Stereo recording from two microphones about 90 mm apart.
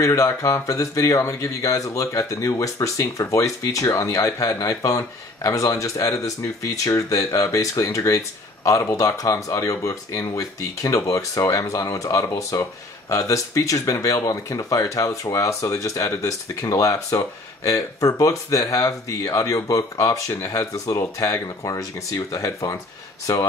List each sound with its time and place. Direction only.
0.0 s speech: 35° left (ahead or behind)